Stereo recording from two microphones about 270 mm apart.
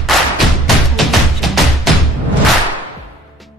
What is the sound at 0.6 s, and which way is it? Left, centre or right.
Music, centre.